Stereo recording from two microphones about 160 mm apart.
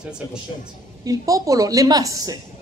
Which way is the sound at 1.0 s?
20° right (ahead or behind).